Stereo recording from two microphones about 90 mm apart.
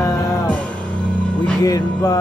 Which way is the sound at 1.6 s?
45° left (ahead or behind).